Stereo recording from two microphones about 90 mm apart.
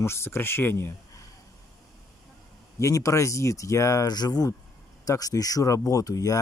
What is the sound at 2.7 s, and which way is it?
Speech, 35° left (ahead or behind).